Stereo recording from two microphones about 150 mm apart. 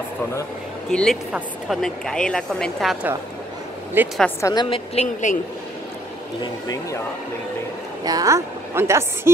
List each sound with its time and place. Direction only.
0.8 s speech: 5° left (ahead or behind)
4.0 s a woman's voice: 15° right (ahead or behind)
4.4 s speech: 20° left (ahead or behind)
4.6 s a woman's voice: 35° left (ahead or behind)
5.0 s speech: 55° left (ahead or behind)
6.4 s speech: 25° left (ahead or behind)
8.0 s a woman's voice: 25° right (ahead or behind)